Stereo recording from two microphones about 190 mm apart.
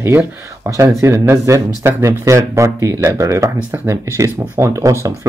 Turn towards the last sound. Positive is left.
turn(degrees=-15)  # may be behind; listen again after turning